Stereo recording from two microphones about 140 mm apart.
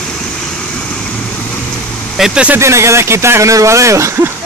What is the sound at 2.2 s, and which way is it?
Speech, 5° right (ahead or behind).